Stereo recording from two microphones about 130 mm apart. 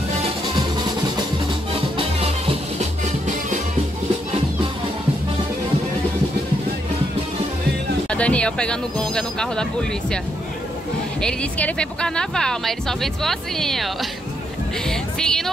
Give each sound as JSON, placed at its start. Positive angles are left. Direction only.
{"t": 2.0, "sound": "music", "side_deg": -45}
{"t": 8.1, "sound": "speech", "side_deg": 10}